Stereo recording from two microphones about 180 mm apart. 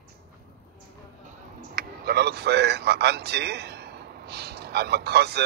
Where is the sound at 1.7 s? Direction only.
60° right (ahead or behind).